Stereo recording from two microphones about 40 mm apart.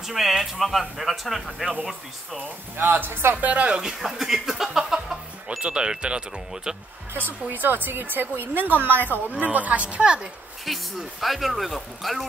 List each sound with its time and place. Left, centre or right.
0.0 s speech: centre
2.8 s speech: right
3.1 s speech: right
3.3 s a woman's voice: right
3.6 s speech: right
4.0 s speech: centre
5.6 s speech: right
7.2 s speech: right
9.3 s a woman's voice: right
10.6 s speech: centre